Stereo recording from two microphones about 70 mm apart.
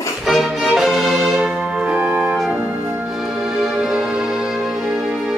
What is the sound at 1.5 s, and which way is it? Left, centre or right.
Music, centre.